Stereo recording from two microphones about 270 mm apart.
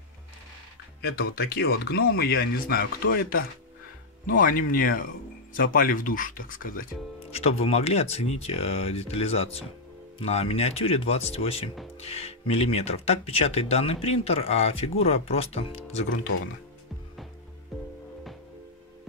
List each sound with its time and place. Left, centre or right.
1.4 s speech: left